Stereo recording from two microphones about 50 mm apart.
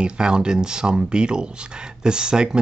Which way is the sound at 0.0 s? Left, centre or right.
Centre.